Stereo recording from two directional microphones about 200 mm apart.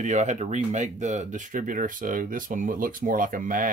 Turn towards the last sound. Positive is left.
turn(degrees=-45)  # may be behind; listen again after turning